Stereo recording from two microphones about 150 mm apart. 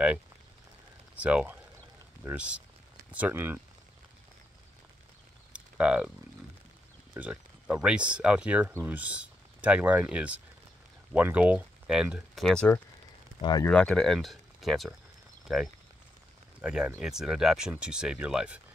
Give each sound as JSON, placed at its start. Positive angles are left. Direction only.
{"t": 1.1, "sound": "speech", "side_deg": -10}
{"t": 5.5, "sound": "a sound", "side_deg": -10}
{"t": 7.2, "sound": "speech", "side_deg": -10}
{"t": 13.4, "sound": "speech", "side_deg": 30}
{"t": 13.7, "sound": "speech", "side_deg": 5}